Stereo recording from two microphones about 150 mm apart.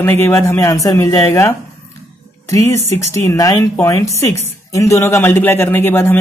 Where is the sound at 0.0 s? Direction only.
15° left (ahead or behind).